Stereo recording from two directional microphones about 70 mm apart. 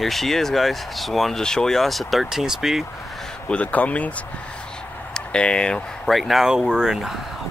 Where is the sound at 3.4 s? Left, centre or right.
Centre.